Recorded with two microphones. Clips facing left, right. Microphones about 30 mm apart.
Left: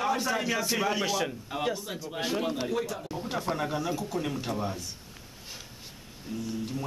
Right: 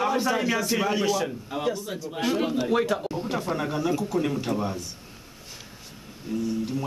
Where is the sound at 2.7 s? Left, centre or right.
Right.